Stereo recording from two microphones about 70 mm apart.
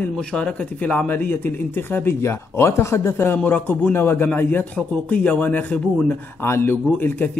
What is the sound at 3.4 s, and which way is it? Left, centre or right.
Speech, left.